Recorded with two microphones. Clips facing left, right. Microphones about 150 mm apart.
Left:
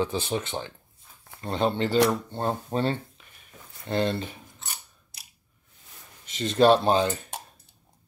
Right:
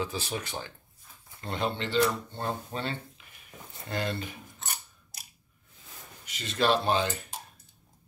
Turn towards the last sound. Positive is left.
turn(degrees=35)  # may be behind; listen again after turning